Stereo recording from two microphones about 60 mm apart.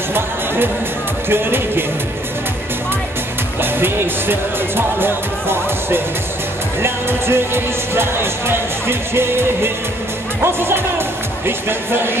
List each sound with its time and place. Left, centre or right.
1.3 s speech: right
3.6 s speech: right